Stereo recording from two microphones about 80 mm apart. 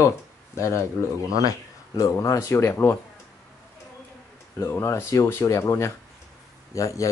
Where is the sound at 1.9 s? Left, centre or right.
Left.